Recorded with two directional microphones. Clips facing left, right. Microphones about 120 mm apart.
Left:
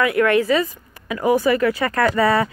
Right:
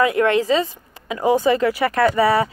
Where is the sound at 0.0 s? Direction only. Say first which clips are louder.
Even; 25° right (ahead or behind).